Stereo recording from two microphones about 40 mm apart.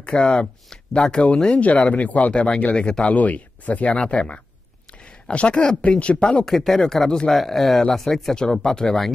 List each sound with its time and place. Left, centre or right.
0.0 s speech: left
2.3 s speech: left
3.2 s speech: left
6.4 s speech: centre